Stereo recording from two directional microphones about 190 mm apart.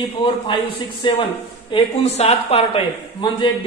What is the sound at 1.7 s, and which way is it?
A man's voice, 35° left (ahead or behind).